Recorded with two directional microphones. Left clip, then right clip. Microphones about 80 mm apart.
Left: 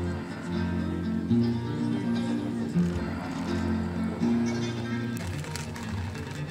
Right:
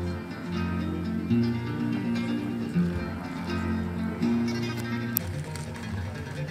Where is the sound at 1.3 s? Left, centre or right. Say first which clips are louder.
Even; right.